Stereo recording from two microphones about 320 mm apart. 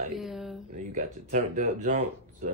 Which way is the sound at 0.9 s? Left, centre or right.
Right.